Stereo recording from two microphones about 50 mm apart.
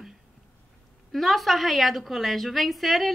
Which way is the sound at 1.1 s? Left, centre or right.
Centre.